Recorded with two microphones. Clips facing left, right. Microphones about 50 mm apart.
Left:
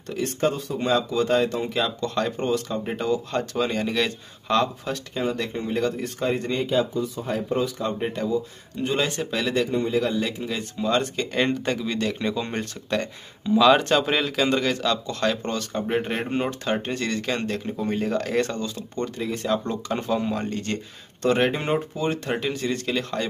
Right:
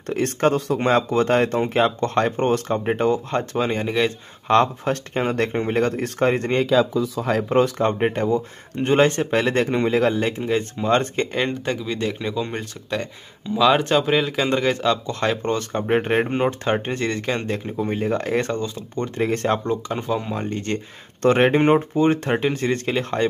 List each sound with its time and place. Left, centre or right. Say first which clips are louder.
0.0 s speech: right 4 dB; right
4.5 s speech: right 5 dB; right
6.6 s speech: right 6 dB; right
8.0 s speech: right 5 dB; right
9.7 s a man's voice: right 4 dB; right
10.1 s speech: right 5 dB; right
11.3 s speech: left 4 dB; centre
14.3 s speech: right 2 dB; centre
19.1 s speech: right 5 dB; right
19.9 s speech: even; centre
20.4 s speech: right 3 dB; right
21.2 s speech: right 6 dB; right